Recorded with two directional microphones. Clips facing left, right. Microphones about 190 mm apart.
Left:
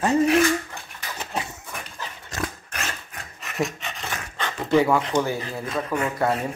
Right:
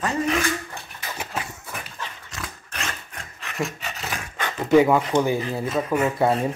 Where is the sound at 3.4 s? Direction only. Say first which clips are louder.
Left 2 dB; centre (ahead or behind); by 5.6 s 15° right (ahead or behind).